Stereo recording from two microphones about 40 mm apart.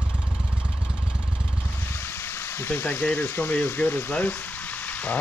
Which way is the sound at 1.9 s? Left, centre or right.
Left.